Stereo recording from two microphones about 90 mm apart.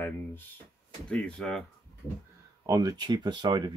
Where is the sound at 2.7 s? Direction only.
45° right (ahead or behind).